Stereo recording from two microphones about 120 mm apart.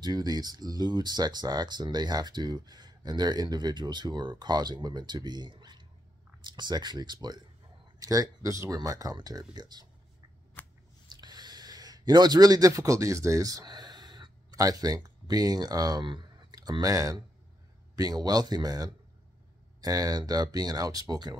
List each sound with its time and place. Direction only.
0.0 s speech: 35° right (ahead or behind)
10.6 s scissors: 15° left (ahead or behind)
11.1 s speech: 35° right (ahead or behind)